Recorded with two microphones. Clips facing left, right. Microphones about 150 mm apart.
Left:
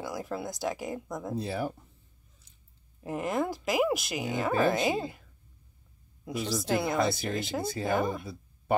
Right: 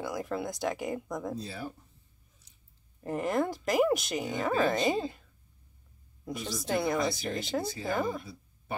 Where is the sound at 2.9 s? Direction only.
Centre (ahead or behind).